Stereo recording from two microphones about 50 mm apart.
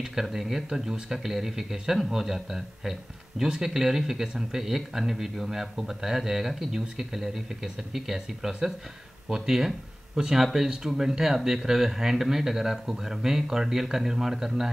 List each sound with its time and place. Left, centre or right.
0.0 s speech: centre